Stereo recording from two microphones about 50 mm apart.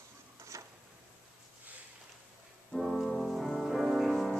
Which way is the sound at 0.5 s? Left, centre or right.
Right.